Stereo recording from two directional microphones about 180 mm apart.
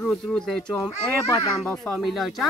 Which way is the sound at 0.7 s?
15° left (ahead or behind).